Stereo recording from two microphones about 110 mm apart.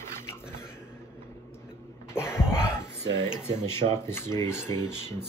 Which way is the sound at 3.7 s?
25° left (ahead or behind).